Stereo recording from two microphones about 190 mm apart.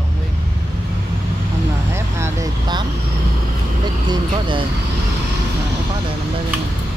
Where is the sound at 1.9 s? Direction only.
15° right (ahead or behind).